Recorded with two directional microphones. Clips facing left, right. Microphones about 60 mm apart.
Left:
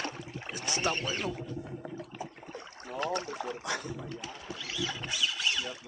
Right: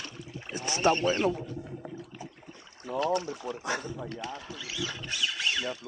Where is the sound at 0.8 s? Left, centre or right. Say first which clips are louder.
Right 9 dB; right.